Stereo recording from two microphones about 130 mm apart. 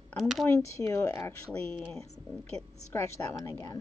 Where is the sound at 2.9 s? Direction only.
20° left (ahead or behind).